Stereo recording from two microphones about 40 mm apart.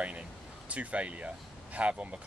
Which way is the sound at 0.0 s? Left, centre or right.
Right.